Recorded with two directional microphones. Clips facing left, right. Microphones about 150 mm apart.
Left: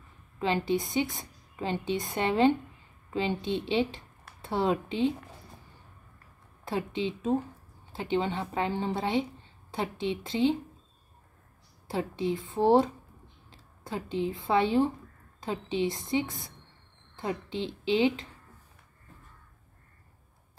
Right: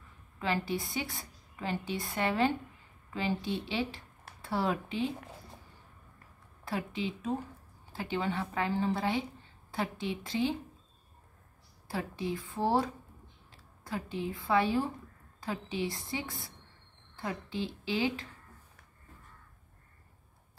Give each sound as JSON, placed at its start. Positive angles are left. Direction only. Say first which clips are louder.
{"t": 0.4, "sound": "a woman's voice", "louder": "left 5 dB", "side_deg": 20}
{"t": 6.6, "sound": "a woman's voice", "louder": "left 4 dB", "side_deg": 25}
{"t": 11.9, "sound": "a woman's voice", "louder": "left 5 dB", "side_deg": 25}